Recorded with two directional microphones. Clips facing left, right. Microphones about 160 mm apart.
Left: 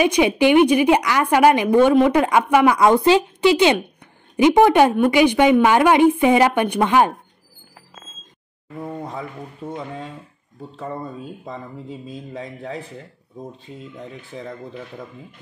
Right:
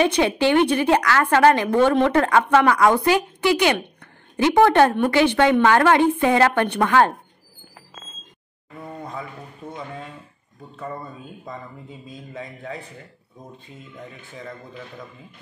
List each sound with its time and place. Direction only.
0.0 s a woman's voice: 15° left (ahead or behind)
8.8 s speech: 30° left (ahead or behind)
12.4 s speech: 35° left (ahead or behind)
13.9 s speech: 30° left (ahead or behind)